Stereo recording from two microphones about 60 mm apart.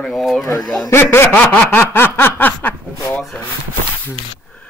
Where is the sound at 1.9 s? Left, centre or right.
Left.